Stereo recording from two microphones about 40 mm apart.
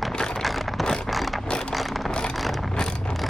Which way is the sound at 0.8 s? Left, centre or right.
Centre.